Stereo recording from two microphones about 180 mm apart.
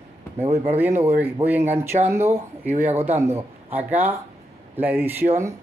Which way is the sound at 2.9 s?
15° right (ahead or behind).